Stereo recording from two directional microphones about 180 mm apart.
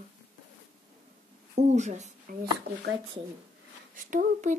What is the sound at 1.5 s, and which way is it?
Speech, 40° right (ahead or behind).